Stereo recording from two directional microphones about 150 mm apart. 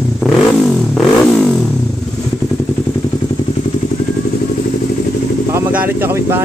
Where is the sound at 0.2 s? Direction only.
Centre (ahead or behind).